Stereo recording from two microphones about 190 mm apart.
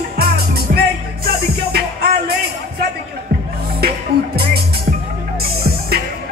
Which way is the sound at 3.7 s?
55° right (ahead or behind).